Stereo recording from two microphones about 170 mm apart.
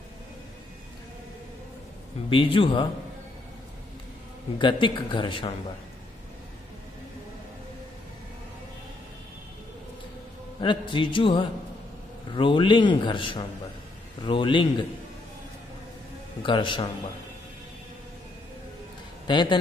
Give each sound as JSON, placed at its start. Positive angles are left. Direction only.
{"t": 2.2, "sound": "speech", "side_deg": 30}
{"t": 4.6, "sound": "a man's voice", "side_deg": 30}
{"t": 10.6, "sound": "a man's voice", "side_deg": 30}
{"t": 16.4, "sound": "a man's voice", "side_deg": 30}
{"t": 19.2, "sound": "a man's voice", "side_deg": 25}